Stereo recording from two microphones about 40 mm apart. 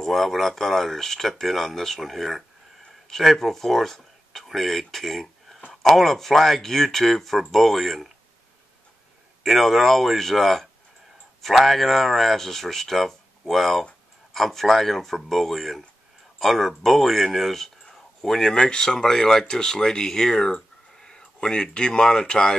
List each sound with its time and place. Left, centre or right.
0.0 s speech: centre
9.4 s speech: centre
17.8 s a sound: centre
18.5 s speech: left